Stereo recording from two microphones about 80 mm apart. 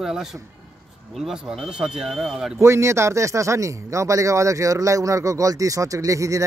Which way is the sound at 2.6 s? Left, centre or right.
Right.